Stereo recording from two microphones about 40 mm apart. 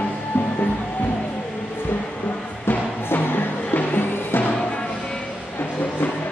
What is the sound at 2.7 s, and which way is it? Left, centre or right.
Music, left.